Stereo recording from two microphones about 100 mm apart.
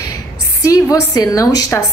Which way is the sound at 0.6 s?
35° left (ahead or behind).